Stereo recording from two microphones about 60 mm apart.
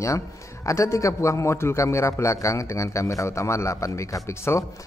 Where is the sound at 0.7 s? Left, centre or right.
Left.